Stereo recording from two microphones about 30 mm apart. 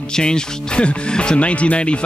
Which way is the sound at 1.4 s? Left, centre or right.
Left.